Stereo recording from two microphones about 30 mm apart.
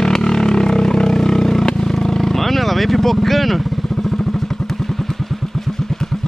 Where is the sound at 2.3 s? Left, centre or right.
Centre.